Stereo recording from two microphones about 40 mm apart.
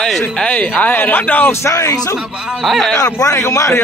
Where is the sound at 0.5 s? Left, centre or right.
Left.